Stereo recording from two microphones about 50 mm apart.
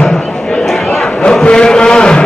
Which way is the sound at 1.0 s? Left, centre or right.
Centre.